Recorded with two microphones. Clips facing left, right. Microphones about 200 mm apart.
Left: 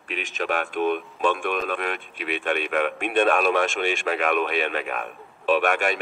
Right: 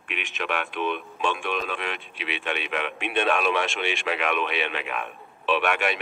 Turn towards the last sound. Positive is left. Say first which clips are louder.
# left 3 dB
turn(degrees=45)  # may be behind; listen again after turning